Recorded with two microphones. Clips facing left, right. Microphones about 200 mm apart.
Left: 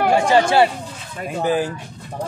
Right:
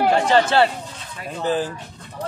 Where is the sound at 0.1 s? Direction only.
10° left (ahead or behind).